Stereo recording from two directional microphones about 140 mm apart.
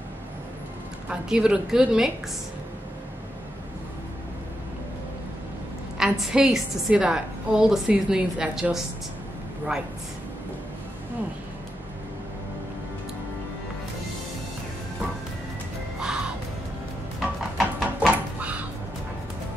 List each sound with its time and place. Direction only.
1.0 s a woman's voice: 5° right (ahead or behind)
5.9 s a woman's voice: 5° right (ahead or behind)
16.0 s music: 5° right (ahead or behind)
18.1 s a sound: 10° right (ahead or behind)